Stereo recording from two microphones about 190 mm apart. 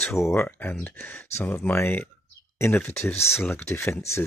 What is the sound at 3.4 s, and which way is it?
Speech, 10° left (ahead or behind).